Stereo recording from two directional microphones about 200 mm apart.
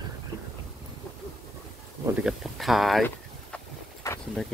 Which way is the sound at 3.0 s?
10° left (ahead or behind).